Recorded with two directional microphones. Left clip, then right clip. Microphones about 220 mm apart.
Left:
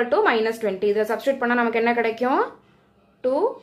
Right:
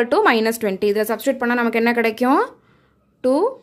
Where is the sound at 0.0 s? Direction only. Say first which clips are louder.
Right 3 dB; 45° right (ahead or behind).